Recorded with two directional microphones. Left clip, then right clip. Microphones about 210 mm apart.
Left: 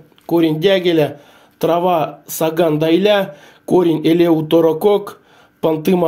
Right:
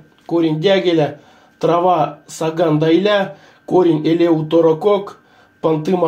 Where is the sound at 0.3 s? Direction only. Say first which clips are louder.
Left 1 dB; 35° left (ahead or behind).